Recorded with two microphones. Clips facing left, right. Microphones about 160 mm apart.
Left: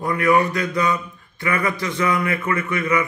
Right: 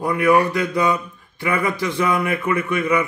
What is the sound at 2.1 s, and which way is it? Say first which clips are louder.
Speech: right 2 dB; 15° right (ahead or behind).